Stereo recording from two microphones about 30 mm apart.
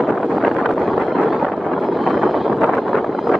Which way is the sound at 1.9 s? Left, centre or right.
Centre.